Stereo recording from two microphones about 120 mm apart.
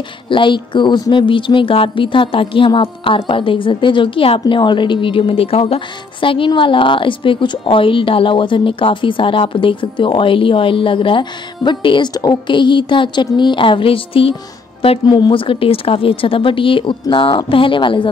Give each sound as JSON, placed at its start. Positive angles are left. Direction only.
{"t": 0.3, "sound": "a woman's voice", "side_deg": 40}